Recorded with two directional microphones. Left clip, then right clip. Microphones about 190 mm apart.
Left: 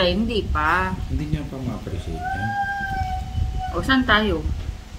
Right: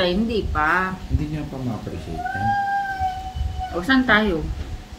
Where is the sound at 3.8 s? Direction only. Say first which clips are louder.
Right 1 dB; 15° left (ahead or behind).